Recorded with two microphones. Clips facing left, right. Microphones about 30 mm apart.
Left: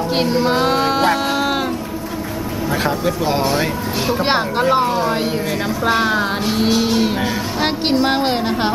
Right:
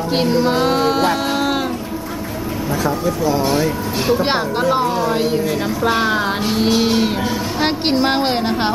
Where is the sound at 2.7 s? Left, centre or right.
Left.